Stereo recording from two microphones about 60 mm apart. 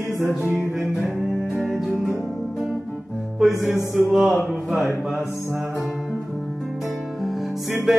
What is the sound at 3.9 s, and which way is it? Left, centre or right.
Music, centre.